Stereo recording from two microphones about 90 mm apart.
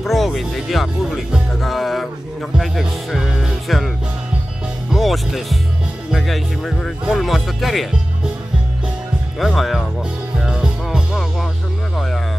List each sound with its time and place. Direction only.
0.0 s speech: centre (ahead or behind)
4.9 s speech: centre (ahead or behind)
9.4 s speech: centre (ahead or behind)
10.4 s music: 5° right (ahead or behind)